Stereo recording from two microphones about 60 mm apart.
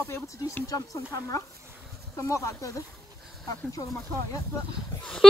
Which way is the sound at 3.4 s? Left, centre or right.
Left.